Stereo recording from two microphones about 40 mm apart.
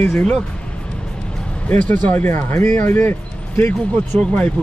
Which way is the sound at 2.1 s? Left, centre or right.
Left.